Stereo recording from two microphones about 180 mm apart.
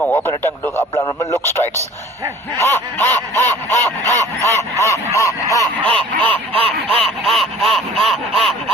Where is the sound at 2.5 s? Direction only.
15° left (ahead or behind).